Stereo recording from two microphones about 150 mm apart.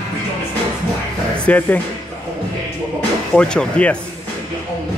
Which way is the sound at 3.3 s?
5° left (ahead or behind).